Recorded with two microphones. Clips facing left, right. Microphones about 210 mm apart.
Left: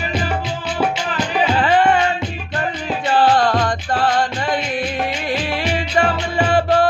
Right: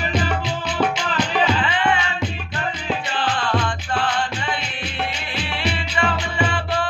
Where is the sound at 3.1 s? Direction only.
40° left (ahead or behind).